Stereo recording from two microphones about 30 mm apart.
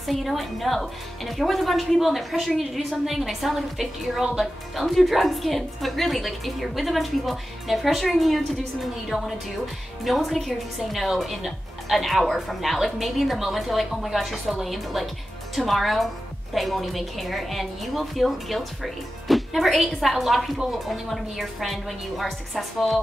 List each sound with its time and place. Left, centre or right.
0.0 s a woman's voice: centre
4.7 s a woman's voice: centre
9.1 s a woman's voice: right
10.0 s a woman's voice: centre